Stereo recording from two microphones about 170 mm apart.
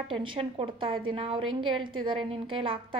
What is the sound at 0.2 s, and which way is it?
A woman's voice, 30° right (ahead or behind).